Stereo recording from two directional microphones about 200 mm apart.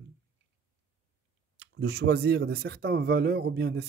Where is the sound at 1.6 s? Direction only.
60° right (ahead or behind).